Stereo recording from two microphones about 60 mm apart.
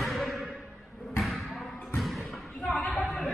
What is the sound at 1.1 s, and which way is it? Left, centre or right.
Basketball bounce, centre.